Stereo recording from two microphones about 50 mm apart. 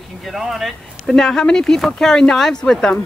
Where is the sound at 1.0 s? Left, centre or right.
Centre.